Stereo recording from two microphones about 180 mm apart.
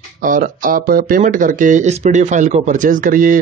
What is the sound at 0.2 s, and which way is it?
Speech, 50° right (ahead or behind).